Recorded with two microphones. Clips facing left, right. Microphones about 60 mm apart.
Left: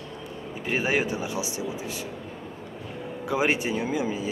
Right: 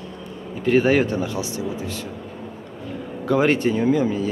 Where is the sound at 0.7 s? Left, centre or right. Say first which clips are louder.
Right 8 dB; centre.